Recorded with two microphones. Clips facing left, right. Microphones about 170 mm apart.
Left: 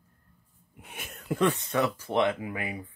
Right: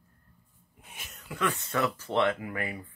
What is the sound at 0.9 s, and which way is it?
Speech, 55° left (ahead or behind).